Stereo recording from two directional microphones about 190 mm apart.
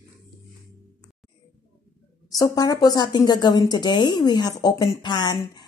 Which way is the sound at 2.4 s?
20° left (ahead or behind).